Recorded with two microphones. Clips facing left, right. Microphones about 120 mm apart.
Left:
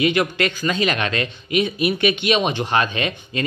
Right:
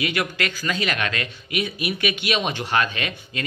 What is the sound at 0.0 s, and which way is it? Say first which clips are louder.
Speech: left 6 dB; 25° left (ahead or behind).